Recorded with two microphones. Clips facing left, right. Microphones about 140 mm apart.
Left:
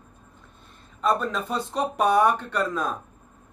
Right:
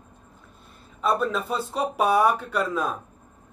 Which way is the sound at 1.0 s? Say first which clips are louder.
Even; 5° right (ahead or behind).